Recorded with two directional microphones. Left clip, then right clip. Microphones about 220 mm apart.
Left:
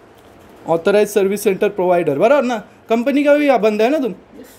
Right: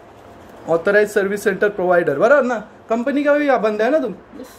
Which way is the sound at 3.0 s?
55° left (ahead or behind).